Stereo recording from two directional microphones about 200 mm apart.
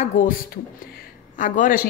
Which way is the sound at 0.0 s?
35° left (ahead or behind).